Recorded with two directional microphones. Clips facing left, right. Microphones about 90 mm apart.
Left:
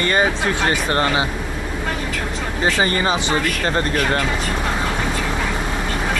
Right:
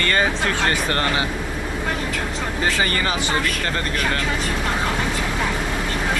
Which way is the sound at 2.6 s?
25° left (ahead or behind).